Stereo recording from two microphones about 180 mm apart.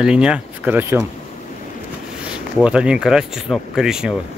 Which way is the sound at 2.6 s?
5° right (ahead or behind).